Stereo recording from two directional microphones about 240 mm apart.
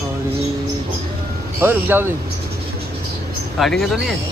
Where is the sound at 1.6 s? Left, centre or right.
Centre.